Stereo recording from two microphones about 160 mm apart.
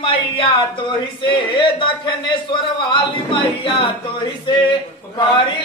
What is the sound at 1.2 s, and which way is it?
Chant, 30° left (ahead or behind).